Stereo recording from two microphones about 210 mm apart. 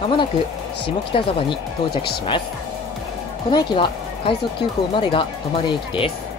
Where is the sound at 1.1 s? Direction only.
25° left (ahead or behind).